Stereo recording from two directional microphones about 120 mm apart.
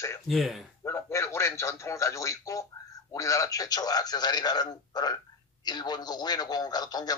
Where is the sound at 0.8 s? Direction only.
20° left (ahead or behind).